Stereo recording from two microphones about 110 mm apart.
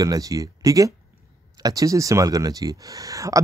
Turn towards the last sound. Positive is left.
turn(degrees=-30)  # may be behind; listen again after turning